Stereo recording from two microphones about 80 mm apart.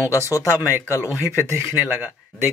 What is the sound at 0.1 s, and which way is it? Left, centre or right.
Speech, left.